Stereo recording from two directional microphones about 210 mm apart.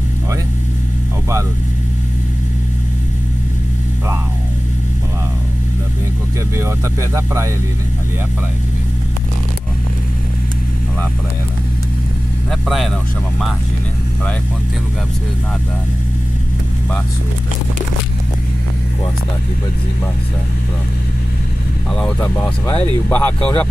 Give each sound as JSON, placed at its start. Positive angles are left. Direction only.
{"t": 12.4, "sound": "speech", "side_deg": 0}
{"t": 21.9, "sound": "speech", "side_deg": 5}